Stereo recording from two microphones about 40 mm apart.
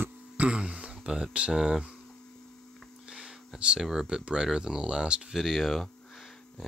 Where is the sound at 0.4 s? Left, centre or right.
Right.